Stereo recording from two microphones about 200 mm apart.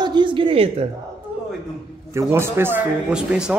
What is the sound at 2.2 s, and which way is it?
Speech, 15° right (ahead or behind).